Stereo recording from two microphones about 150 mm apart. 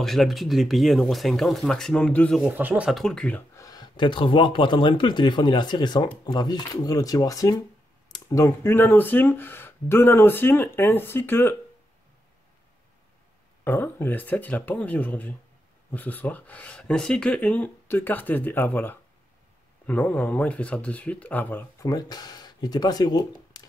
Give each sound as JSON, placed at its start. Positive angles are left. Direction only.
{"t": 0.0, "sound": "speech", "side_deg": 0}
{"t": 2.4, "sound": "speech", "side_deg": -10}
{"t": 3.5, "sound": "speech", "side_deg": 25}
{"t": 13.7, "sound": "speech", "side_deg": 15}
{"t": 21.8, "sound": "speech", "side_deg": 25}